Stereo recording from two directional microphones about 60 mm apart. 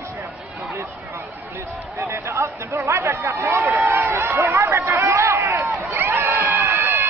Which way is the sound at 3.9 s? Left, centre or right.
Right.